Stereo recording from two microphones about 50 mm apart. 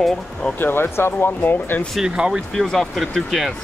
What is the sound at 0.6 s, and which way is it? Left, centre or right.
Speech, left.